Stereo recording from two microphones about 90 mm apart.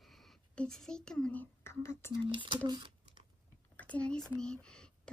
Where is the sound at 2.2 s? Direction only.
65° right (ahead or behind).